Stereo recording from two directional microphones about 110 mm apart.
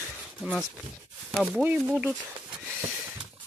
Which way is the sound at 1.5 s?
15° right (ahead or behind).